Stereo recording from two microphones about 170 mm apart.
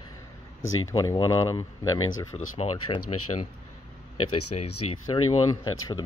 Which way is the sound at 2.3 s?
35° left (ahead or behind).